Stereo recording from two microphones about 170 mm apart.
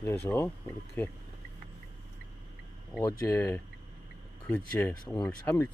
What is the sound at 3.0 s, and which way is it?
Speech, 15° left (ahead or behind).